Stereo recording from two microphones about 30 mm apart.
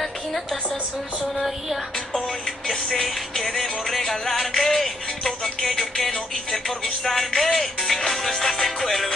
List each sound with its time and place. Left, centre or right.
2.9 s music: centre